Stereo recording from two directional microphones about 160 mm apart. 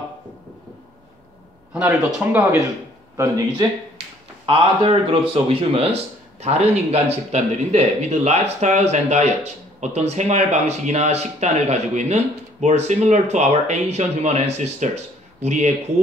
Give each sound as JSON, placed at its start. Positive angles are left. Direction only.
{"t": 3.2, "sound": "speech", "side_deg": -20}
{"t": 4.5, "sound": "speech", "side_deg": -35}